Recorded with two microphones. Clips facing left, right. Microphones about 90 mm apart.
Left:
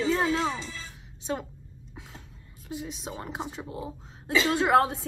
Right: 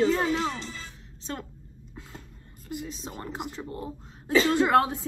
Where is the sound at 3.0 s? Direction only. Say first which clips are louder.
Left 1 dB; 10° left (ahead or behind).